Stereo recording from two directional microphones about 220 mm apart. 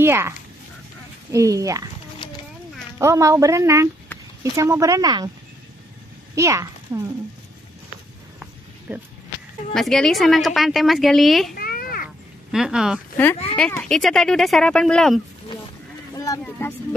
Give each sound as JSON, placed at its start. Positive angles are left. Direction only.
{"t": 0.0, "sound": "speech", "side_deg": -10}
{"t": 1.3, "sound": "speech", "side_deg": -15}
{"t": 3.0, "sound": "speech", "side_deg": -15}
{"t": 6.3, "sound": "speech", "side_deg": -15}
{"t": 8.4, "sound": "a sound", "side_deg": -5}
{"t": 9.8, "sound": "speech", "side_deg": 0}
{"t": 11.5, "sound": "a sound", "side_deg": 45}
{"t": 12.4, "sound": "speech", "side_deg": 0}
{"t": 16.2, "sound": "speech", "side_deg": 15}